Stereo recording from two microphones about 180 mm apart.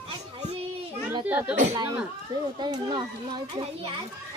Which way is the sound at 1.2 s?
10° right (ahead or behind).